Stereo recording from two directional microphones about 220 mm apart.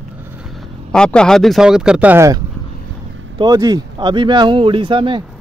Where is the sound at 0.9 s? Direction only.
5° left (ahead or behind).